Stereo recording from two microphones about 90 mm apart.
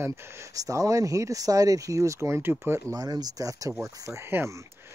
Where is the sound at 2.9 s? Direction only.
45° right (ahead or behind).